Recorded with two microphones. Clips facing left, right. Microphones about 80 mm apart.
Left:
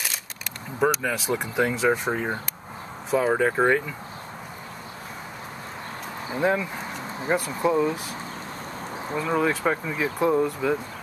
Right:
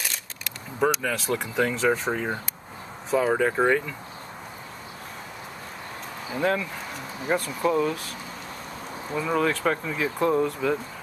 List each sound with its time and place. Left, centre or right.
0.7 s speech: centre
6.3 s speech: centre
9.3 s speech: centre